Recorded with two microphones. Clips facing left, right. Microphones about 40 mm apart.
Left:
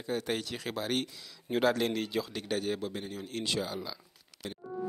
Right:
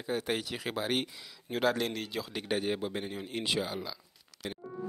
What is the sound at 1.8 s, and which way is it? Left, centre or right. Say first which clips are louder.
Speech: left 3 dB; centre.